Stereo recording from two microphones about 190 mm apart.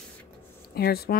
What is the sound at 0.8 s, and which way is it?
Speech, 55° left (ahead or behind).